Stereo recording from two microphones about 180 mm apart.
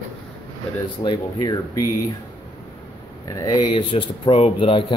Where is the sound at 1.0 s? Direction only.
25° left (ahead or behind).